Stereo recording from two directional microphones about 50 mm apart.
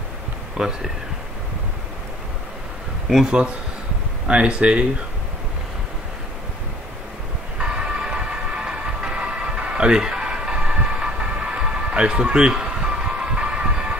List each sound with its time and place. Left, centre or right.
0.6 s speech: centre
3.3 s speech: right
7.5 s music: centre